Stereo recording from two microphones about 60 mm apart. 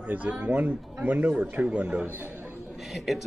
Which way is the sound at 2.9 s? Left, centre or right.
Centre.